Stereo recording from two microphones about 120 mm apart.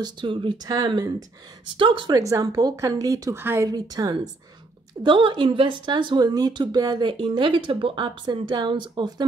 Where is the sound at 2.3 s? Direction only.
30° right (ahead or behind).